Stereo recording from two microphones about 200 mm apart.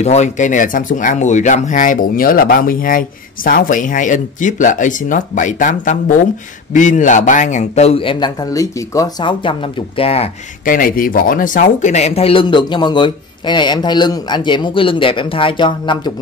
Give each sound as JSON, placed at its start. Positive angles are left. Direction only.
{"t": 0.0, "sound": "speech", "side_deg": 35}
{"t": 10.6, "sound": "speech", "side_deg": 45}